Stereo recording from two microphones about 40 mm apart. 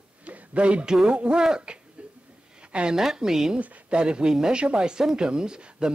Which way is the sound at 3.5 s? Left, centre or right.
Right.